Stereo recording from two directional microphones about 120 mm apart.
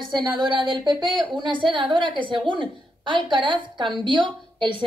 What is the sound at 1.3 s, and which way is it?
A woman's voice, 40° right (ahead or behind).